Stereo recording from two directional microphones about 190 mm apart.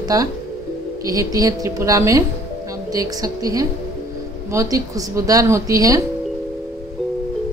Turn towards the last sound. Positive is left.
turn(degrees=-15)  # may be behind; listen again after turning